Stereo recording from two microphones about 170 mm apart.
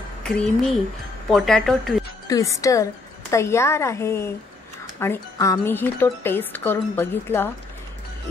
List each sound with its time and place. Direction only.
0.2 s speech: 5° left (ahead or behind)
2.2 s a woman's voice: 20° left (ahead or behind)